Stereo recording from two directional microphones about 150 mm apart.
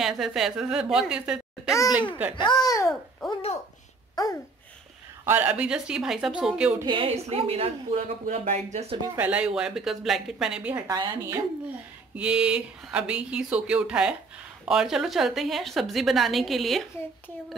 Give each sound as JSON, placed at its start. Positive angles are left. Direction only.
{"t": 0.0, "sound": "a woman's voice", "side_deg": 0}
{"t": 2.3, "sound": "a child's voice", "side_deg": 30}
{"t": 3.2, "sound": "a woman's voice", "side_deg": 0}
{"t": 4.1, "sound": "babbling", "side_deg": 25}
{"t": 5.2, "sound": "speech", "side_deg": -15}
{"t": 6.8, "sound": "a woman's voice", "side_deg": -30}
{"t": 7.1, "sound": "speech", "side_deg": -45}
{"t": 9.0, "sound": "a woman's voice", "side_deg": -15}
{"t": 10.9, "sound": "a woman's voice", "side_deg": -25}
{"t": 12.2, "sound": "a woman's voice", "side_deg": -5}